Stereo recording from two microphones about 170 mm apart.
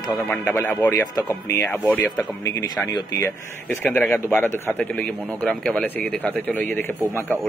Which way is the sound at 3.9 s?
5° left (ahead or behind).